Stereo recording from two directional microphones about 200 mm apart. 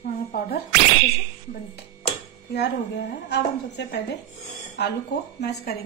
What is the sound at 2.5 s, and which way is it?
A woman's voice, 55° left (ahead or behind).